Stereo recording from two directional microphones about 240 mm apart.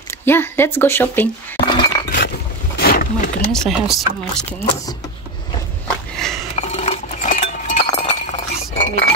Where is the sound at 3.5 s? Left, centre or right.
Centre.